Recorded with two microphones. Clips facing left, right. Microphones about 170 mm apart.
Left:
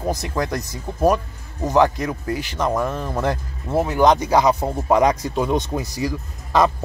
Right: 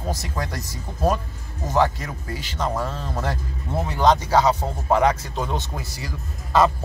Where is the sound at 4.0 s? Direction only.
15° left (ahead or behind).